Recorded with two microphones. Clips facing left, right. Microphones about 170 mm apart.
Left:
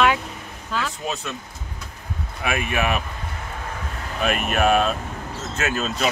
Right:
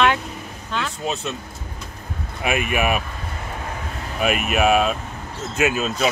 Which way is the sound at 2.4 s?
15° right (ahead or behind).